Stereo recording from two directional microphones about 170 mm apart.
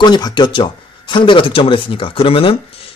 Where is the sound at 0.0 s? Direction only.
25° left (ahead or behind).